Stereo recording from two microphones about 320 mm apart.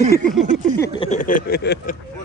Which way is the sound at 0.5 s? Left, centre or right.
Right.